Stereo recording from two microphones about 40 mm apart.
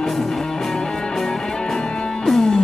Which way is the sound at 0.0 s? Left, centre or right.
Centre.